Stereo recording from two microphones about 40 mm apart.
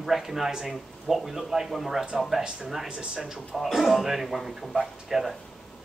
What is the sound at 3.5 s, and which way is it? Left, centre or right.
Speech, centre.